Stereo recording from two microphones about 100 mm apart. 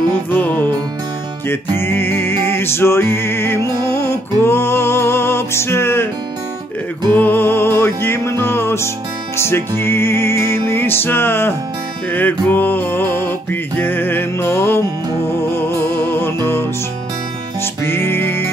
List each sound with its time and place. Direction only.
0.3 s music: 15° left (ahead or behind)
1.8 s music: 20° left (ahead or behind)
7.2 s music: 20° left (ahead or behind)
17.8 s music: 25° left (ahead or behind)